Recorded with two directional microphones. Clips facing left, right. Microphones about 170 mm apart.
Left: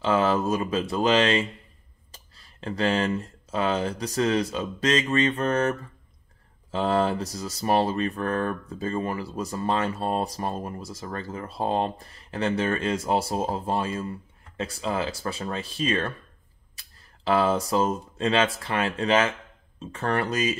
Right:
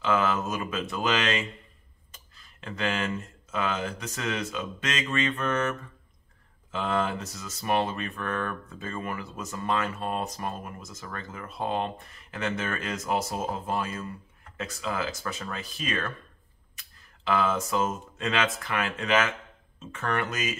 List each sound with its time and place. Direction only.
0.0 s speech: 30° left (ahead or behind)